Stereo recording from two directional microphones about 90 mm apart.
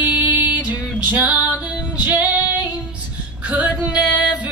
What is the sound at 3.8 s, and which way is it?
Music, 15° right (ahead or behind).